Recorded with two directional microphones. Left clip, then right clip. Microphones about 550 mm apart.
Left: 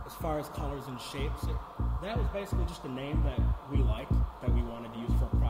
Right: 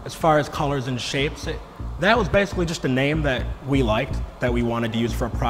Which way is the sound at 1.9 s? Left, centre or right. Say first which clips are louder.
Right 19 dB; right.